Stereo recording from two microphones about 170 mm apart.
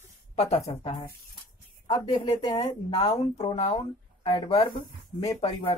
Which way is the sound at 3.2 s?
35° left (ahead or behind).